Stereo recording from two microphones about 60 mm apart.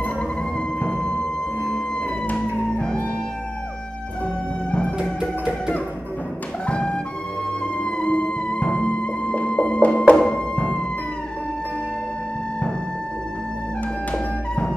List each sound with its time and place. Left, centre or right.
0.8 s music: centre
2.3 s music: centre
4.6 s music: centre
6.6 s music: centre
14.1 s music: centre